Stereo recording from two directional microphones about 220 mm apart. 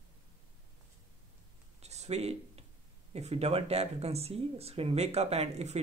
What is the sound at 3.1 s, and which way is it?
Speech, 30° right (ahead or behind).